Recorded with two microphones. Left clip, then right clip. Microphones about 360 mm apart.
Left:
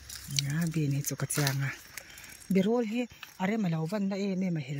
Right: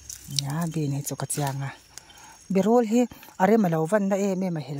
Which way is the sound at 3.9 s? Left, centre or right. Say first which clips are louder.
Right 10 dB; right.